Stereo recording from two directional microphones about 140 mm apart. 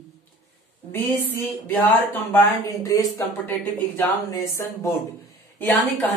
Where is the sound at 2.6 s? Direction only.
25° left (ahead or behind).